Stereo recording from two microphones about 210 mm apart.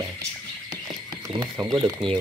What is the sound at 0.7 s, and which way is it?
Frog, 20° right (ahead or behind).